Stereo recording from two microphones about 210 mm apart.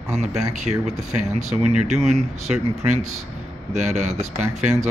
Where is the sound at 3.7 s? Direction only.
35° right (ahead or behind).